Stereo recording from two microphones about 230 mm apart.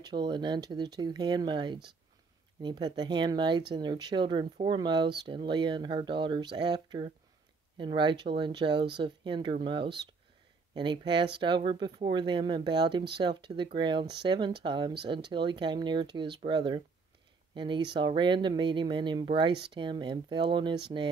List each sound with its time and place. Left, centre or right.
0.0 s speech: centre